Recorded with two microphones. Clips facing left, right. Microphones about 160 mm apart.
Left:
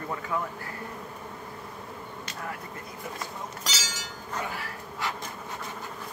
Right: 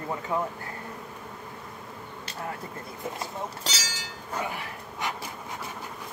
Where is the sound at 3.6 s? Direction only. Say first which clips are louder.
Right 1 dB; 30° right (ahead or behind).